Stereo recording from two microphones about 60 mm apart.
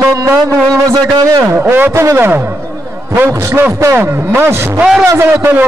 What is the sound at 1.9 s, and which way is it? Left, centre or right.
Speech, right.